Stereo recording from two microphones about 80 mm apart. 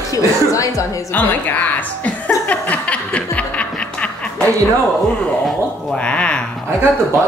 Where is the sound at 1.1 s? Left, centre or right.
Centre.